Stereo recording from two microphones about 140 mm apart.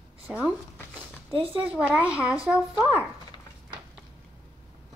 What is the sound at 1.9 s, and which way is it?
Speech, 10° right (ahead or behind).